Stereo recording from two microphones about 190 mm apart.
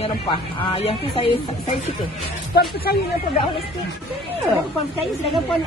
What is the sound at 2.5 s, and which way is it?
Speech, 55° left (ahead or behind).